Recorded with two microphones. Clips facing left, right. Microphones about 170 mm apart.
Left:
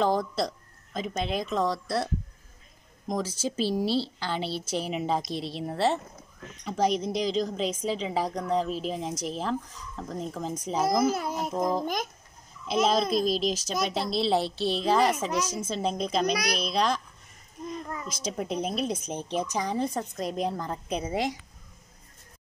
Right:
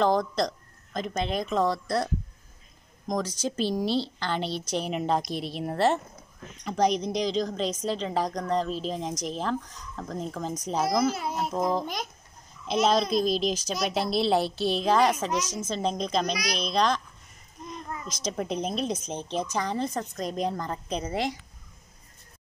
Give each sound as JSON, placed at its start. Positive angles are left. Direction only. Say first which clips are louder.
{"t": 0.0, "sound": "a woman's voice", "louder": "right 2 dB", "side_deg": 5}
{"t": 3.1, "sound": "a woman's voice", "louder": "right 1 dB", "side_deg": 5}
{"t": 11.1, "sound": "a child's voice", "louder": "even", "side_deg": 50}
{"t": 12.6, "sound": "a woman's voice", "louder": "right 1 dB", "side_deg": 0}
{"t": 18.0, "sound": "a woman's voice", "louder": "right 4 dB", "side_deg": 5}